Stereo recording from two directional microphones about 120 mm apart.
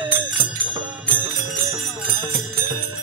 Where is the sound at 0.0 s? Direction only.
20° right (ahead or behind).